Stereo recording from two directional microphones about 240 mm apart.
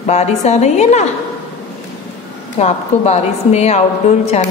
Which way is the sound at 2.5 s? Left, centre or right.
Left.